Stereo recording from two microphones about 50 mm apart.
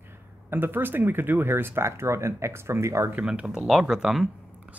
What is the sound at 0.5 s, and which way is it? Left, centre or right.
Speech, right.